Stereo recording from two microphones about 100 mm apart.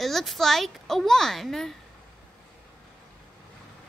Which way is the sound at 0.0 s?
Centre (ahead or behind).